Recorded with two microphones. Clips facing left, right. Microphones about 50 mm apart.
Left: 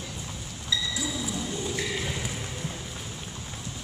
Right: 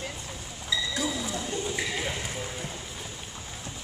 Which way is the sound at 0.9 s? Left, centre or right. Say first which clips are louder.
Right 2 dB; right.